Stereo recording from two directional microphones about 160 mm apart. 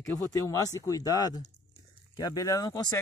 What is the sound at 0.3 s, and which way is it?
Speech, 20° left (ahead or behind).